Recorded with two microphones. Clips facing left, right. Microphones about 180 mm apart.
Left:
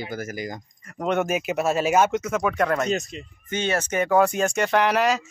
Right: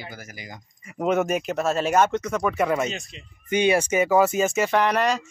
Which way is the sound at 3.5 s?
10° right (ahead or behind).